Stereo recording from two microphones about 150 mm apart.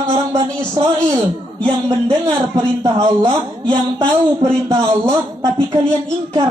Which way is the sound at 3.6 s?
45° right (ahead or behind).